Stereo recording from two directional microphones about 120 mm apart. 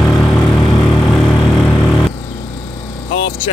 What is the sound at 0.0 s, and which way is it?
Vehicle, 5° left (ahead or behind).